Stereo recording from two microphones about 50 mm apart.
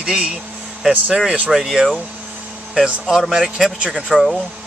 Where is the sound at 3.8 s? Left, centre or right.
Right.